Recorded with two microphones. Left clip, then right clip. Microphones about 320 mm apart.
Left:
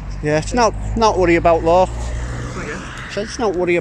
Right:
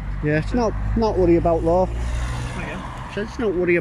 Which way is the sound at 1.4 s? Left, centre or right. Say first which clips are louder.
Left 6 dB; left.